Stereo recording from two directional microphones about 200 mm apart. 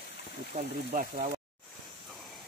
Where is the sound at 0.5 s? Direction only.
35° right (ahead or behind).